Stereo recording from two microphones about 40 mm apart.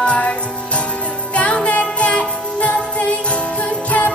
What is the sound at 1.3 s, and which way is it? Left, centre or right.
Jingle bell, left.